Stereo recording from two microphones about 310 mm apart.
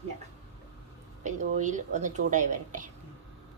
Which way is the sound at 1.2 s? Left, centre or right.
Right.